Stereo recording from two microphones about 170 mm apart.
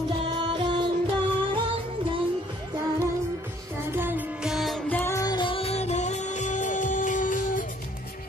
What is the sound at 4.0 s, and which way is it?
Music, 10° right (ahead or behind).